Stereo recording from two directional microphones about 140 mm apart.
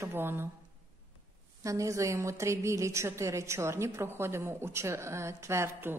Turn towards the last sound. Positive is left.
turn(degrees=-20)  # may be behind; listen again after turning